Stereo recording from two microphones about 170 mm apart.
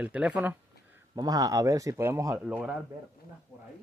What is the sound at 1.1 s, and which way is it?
Speech, 20° right (ahead or behind).